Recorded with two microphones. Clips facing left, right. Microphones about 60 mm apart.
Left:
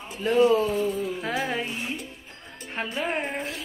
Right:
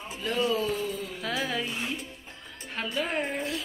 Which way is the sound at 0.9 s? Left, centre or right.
Left.